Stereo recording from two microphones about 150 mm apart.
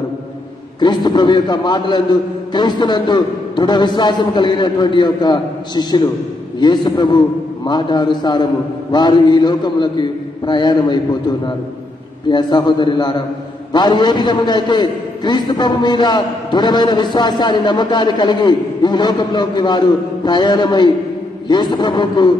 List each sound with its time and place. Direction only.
0.7 s a man's voice: 30° left (ahead or behind)
12.3 s a man's voice: 30° left (ahead or behind)